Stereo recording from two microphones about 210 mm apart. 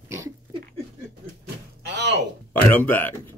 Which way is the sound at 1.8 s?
55° right (ahead or behind).